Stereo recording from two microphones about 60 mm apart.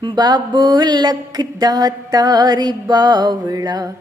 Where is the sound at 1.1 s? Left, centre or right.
Right.